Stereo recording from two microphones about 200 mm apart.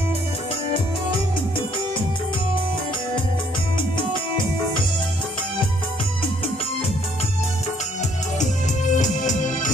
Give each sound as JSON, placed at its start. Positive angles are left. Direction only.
{"t": 8.9, "sound": "music", "side_deg": 40}